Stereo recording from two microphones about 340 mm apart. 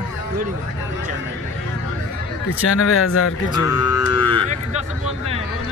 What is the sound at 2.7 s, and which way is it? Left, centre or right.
Speech, left.